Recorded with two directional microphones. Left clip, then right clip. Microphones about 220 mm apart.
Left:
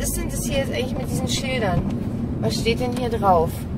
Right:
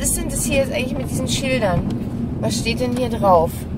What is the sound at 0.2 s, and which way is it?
A woman's voice, 15° right (ahead or behind).